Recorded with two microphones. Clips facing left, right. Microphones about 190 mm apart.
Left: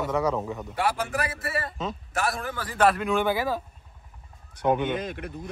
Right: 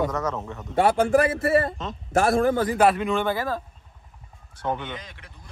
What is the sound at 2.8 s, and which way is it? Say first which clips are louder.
Speech: left 4 dB; centre (ahead or behind).